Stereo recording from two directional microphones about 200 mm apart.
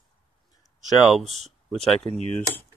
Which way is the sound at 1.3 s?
35° right (ahead or behind).